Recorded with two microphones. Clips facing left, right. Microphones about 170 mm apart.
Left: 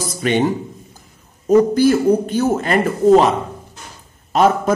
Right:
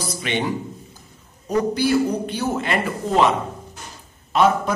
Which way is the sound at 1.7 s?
45° left (ahead or behind).